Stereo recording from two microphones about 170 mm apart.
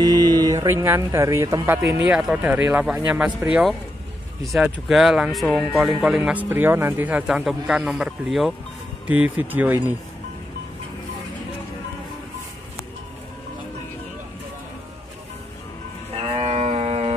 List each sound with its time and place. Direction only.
0.0 s speech: 25° right (ahead or behind); by 3.4 s 5° right (ahead or behind)
4.5 s speech: centre (ahead or behind)
16.2 s music: 35° right (ahead or behind)